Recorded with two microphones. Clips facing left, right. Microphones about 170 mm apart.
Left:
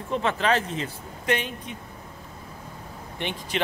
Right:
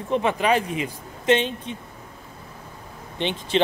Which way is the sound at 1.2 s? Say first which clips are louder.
Right 7 dB; 25° right (ahead or behind).